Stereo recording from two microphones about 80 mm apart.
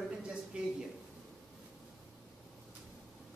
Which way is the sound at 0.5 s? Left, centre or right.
Centre.